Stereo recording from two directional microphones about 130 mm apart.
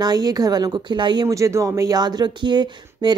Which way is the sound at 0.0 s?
30° right (ahead or behind).